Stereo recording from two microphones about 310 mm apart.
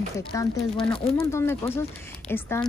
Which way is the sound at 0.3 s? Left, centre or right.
Centre.